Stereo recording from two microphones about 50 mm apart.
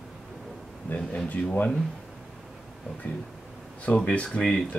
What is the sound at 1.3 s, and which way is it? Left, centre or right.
Speech, left.